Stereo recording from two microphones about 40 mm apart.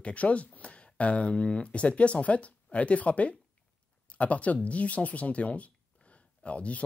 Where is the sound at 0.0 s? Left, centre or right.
Left.